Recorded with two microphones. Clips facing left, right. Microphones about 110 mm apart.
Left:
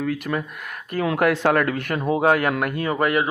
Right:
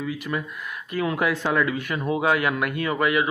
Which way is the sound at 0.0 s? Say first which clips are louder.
Left 4 dB; 55° left (ahead or behind).